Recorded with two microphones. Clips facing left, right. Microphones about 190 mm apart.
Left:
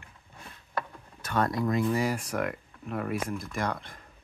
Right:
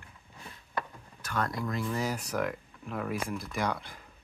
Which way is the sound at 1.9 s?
5° left (ahead or behind).